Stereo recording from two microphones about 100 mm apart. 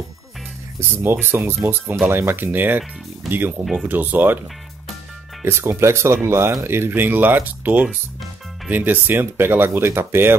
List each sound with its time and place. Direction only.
0.7 s speech: 25° right (ahead or behind)
5.4 s speech: 25° right (ahead or behind)